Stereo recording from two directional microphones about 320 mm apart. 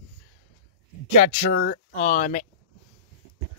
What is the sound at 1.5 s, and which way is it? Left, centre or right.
Speech, left.